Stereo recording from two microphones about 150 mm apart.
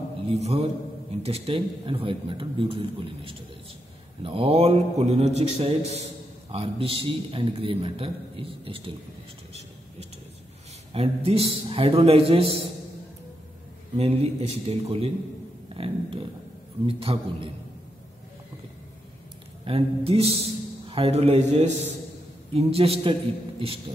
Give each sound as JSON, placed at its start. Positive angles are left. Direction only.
{"t": 0.3, "sound": "mantra", "side_deg": -40}
{"t": 1.2, "sound": "a man's voice", "side_deg": -40}
{"t": 4.2, "sound": "mantra", "side_deg": -40}
{"t": 6.5, "sound": "a man's voice", "side_deg": -40}
{"t": 10.9, "sound": "a man's voice", "side_deg": -40}
{"t": 13.9, "sound": "a man's voice", "side_deg": -45}
{"t": 19.6, "sound": "a man's voice", "side_deg": -40}
{"t": 20.9, "sound": "mantra", "side_deg": -40}
{"t": 22.5, "sound": "a man's voice", "side_deg": -40}